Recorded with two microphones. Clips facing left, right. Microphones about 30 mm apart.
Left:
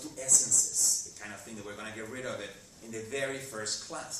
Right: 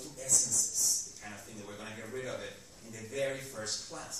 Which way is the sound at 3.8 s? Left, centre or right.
Left.